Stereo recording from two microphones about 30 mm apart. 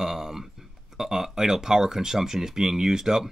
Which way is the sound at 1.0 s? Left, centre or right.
Centre.